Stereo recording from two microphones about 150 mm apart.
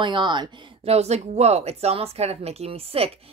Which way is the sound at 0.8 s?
45° right (ahead or behind).